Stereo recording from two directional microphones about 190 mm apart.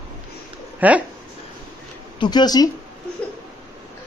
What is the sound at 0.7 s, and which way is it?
Speech, 10° right (ahead or behind).